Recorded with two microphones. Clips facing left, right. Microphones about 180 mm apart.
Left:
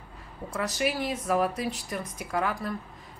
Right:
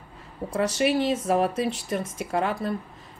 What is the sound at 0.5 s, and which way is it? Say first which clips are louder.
Speech: right 6 dB; 25° right (ahead or behind).